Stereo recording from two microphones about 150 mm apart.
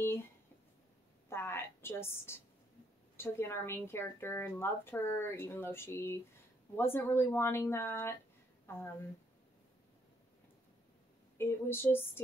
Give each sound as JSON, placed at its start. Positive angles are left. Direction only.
{"t": 1.3, "sound": "a sound", "side_deg": 15}
{"t": 3.2, "sound": "a woman's voice", "side_deg": 15}
{"t": 11.3, "sound": "a woman's voice", "side_deg": 15}